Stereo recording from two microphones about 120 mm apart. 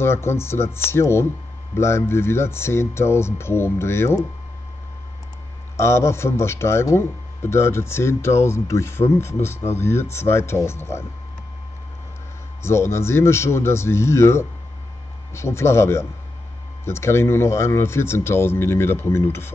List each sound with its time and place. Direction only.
0.0 s a man's voice: 20° left (ahead or behind)
5.8 s a man's voice: 20° left (ahead or behind)
12.6 s a man's voice: 20° left (ahead or behind)